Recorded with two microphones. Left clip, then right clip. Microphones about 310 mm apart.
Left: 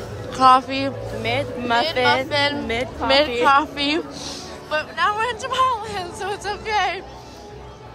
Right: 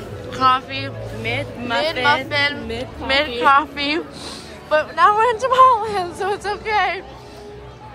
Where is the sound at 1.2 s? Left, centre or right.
Left.